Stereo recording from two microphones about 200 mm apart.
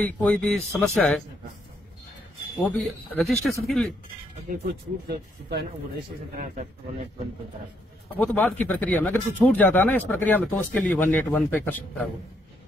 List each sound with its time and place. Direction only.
0.0 s speech: 5° left (ahead or behind)
2.6 s speech: centre (ahead or behind)
5.0 s speech: 55° right (ahead or behind)
6.3 s a man's voice: 40° right (ahead or behind)
8.2 s speech: 10° left (ahead or behind)